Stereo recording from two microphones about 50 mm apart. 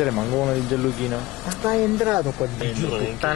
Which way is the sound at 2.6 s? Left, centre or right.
Centre.